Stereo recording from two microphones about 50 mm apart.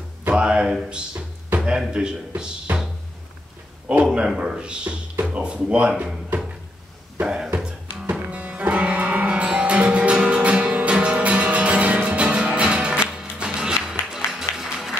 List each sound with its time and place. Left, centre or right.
0.3 s speech: right
4.0 s speech: centre
7.2 s speech: centre
8.1 s music: right; by 15.0 s centre